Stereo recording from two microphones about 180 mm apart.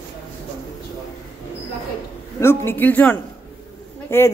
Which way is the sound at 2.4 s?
10° left (ahead or behind).